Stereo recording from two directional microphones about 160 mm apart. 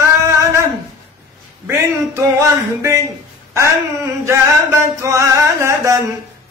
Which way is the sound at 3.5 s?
20° right (ahead or behind).